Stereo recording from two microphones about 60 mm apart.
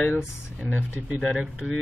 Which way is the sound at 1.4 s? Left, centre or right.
Centre.